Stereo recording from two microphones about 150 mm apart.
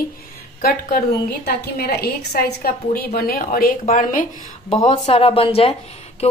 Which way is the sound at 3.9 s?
60° left (ahead or behind).